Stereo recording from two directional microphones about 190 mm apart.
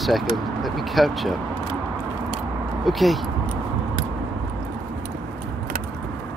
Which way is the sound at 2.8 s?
Centre (ahead or behind).